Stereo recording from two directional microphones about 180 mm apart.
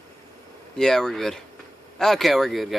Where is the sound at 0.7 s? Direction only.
5° left (ahead or behind).